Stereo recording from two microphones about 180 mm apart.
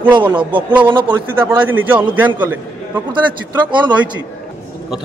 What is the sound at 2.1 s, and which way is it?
Speech, 10° right (ahead or behind).